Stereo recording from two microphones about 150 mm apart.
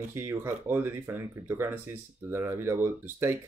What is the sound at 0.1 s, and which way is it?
Speech, 15° right (ahead or behind).